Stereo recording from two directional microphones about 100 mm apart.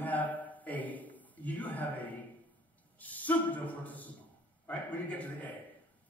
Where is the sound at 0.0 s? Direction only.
15° left (ahead or behind).